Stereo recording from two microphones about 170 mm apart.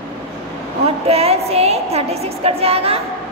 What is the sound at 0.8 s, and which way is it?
A woman's voice, 35° right (ahead or behind).